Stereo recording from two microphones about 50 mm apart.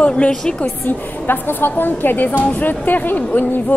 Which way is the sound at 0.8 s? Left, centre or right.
Left.